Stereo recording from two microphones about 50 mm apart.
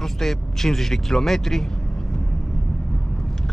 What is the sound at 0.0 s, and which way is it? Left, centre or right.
Speech, centre.